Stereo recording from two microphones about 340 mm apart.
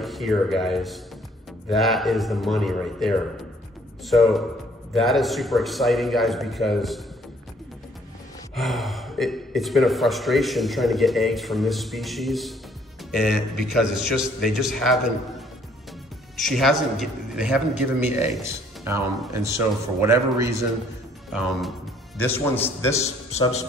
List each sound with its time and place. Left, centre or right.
0.0 s a man's voice: centre
8.5 s a man's voice: centre
23.0 s a man's voice: centre